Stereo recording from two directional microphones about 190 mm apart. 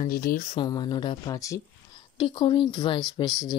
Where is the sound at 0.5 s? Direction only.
20° left (ahead or behind).